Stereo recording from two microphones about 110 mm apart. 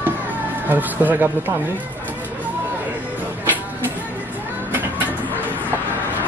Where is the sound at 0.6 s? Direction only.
15° right (ahead or behind).